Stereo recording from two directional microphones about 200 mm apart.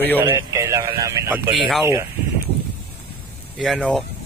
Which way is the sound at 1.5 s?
Centre (ahead or behind).